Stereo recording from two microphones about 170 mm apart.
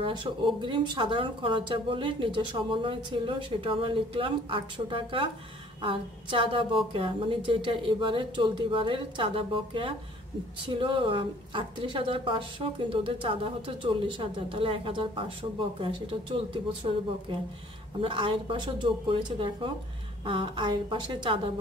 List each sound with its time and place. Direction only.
0.0 s a woman's voice: 30° right (ahead or behind)
18.0 s speech: 30° right (ahead or behind)